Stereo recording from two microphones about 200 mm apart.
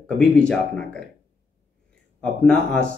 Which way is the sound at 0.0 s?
5° left (ahead or behind).